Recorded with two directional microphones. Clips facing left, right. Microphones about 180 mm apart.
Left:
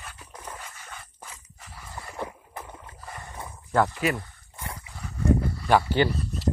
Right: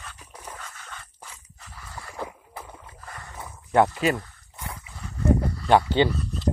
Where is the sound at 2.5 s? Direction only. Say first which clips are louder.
Left 1 dB; 10° right (ahead or behind).